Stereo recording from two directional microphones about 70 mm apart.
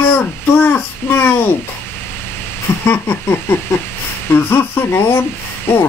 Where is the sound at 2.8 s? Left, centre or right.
Left.